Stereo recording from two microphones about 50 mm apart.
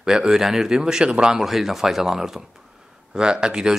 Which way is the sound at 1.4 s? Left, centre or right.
Centre.